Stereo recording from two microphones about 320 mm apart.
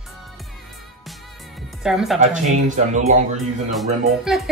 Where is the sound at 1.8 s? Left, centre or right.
Centre.